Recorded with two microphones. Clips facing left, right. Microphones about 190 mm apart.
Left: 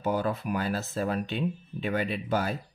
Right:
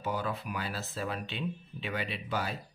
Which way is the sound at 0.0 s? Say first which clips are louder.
Left 6 dB; 45° left (ahead or behind).